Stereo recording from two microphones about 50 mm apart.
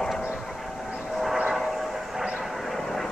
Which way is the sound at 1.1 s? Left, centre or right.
Centre.